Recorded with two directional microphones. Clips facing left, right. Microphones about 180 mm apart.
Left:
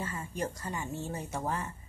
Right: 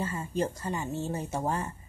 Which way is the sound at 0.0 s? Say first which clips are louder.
Right 5 dB; 30° right (ahead or behind).